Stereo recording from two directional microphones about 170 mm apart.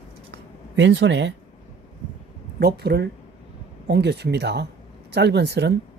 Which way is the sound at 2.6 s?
70° right (ahead or behind).